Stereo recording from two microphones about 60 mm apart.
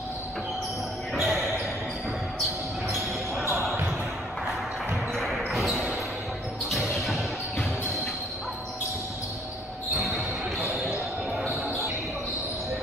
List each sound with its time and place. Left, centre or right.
1.1 s basketball bounce: centre
3.5 s basketball bounce: right
5.1 s basketball bounce: centre
6.7 s music: centre